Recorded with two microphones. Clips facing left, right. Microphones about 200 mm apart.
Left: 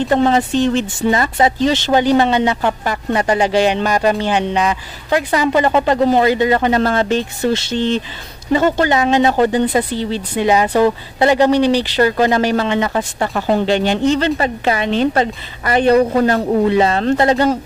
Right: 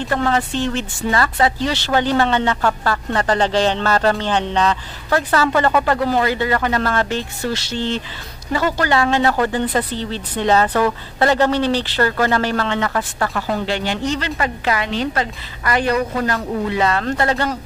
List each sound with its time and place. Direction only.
0.1 s a woman's voice: 20° left (ahead or behind)